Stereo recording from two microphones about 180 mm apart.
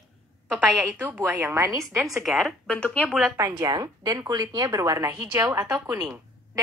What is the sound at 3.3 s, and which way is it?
A woman's voice, 20° right (ahead or behind).